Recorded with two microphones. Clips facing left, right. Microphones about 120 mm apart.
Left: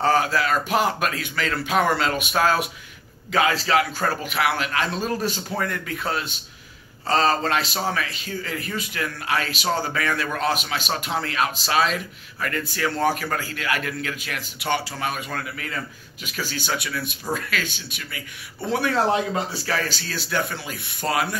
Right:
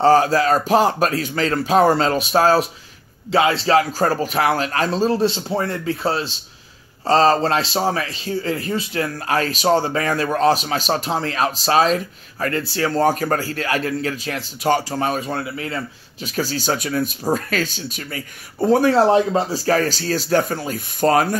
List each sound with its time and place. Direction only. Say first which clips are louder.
0.0 s a man's voice: right 6 dB; 35° right (ahead or behind)